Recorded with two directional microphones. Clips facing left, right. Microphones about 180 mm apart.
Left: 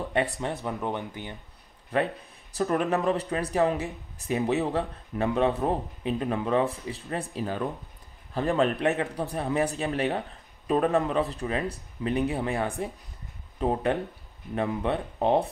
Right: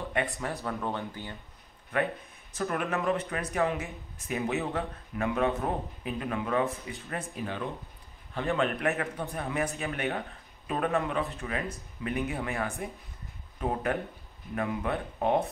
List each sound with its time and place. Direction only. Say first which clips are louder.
0.4 s speech: left 3 dB; 20° left (ahead or behind)
1.9 s speech: left 3 dB; 35° left (ahead or behind)